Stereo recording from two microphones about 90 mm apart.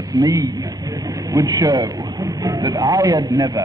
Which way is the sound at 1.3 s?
40° right (ahead or behind).